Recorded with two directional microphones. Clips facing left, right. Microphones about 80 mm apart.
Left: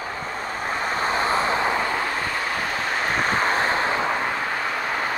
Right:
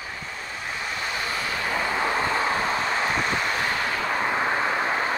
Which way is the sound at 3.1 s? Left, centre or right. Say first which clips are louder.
Left 4 dB; left.